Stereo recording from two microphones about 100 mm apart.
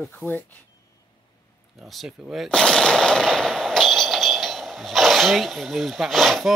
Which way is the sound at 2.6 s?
10° left (ahead or behind).